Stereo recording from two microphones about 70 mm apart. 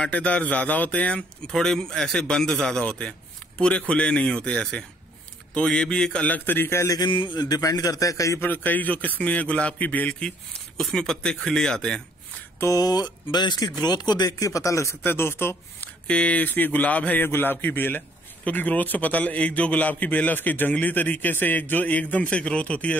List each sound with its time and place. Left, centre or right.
0.0 s a man's voice: centre
1.5 s speech: centre
6.2 s a man's voice: left
6.9 s a man's voice: left
8.4 s a man's voice: left
10.8 s speech: centre
12.7 s speech: left
15.0 s speech: left
16.1 s a man's voice: centre